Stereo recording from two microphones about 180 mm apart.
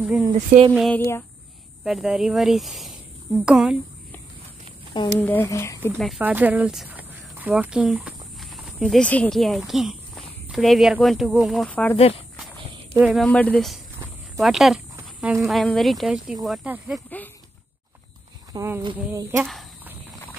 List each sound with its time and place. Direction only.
0.0 s speech: 10° right (ahead or behind)
0.3 s speech: 50° right (ahead or behind)
0.7 s speech: centre (ahead or behind)
5.2 s speech: 10° left (ahead or behind)
5.9 s speech: centre (ahead or behind)
12.9 s speech: 5° right (ahead or behind)
13.3 s speech: 5° left (ahead or behind); by 17.0 s 10° right (ahead or behind)
18.5 s speech: 20° right (ahead or behind)